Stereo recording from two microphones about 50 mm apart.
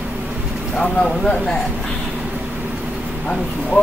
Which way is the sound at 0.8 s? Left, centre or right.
Centre.